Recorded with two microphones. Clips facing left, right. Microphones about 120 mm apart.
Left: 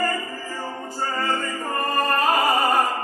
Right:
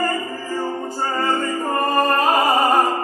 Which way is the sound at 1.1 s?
30° right (ahead or behind).